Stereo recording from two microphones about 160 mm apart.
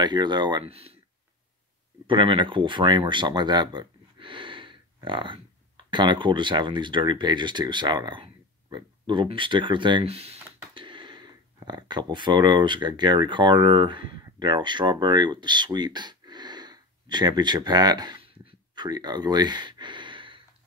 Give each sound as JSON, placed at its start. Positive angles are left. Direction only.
{"t": 0.0, "sound": "speech", "side_deg": -30}
{"t": 2.0, "sound": "speech", "side_deg": -30}
{"t": 18.5, "sound": "a sound", "side_deg": -25}